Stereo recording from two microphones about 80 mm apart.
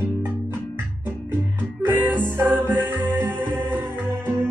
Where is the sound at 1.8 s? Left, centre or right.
Right.